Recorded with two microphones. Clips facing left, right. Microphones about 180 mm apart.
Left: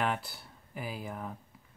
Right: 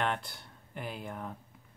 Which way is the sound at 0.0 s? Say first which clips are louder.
Left 1 dB; 5° left (ahead or behind).